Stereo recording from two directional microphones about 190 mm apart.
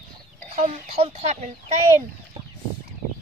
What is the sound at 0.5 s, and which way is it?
Speech, 30° right (ahead or behind).